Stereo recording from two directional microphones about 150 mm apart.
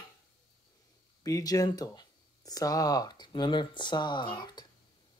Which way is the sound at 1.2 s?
20° left (ahead or behind).